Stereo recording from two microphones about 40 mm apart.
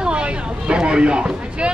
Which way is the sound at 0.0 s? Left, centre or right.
Right.